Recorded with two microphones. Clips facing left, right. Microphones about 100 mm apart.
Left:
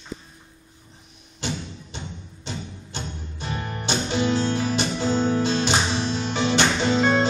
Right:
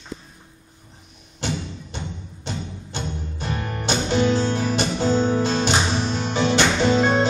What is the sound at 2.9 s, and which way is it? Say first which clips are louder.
Music: right 4 dB; 45° right (ahead or behind).